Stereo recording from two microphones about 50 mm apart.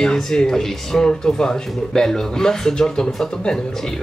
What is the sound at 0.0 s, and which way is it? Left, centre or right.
Speech, centre.